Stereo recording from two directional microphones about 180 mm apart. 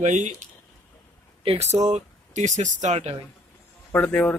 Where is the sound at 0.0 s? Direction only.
45° right (ahead or behind).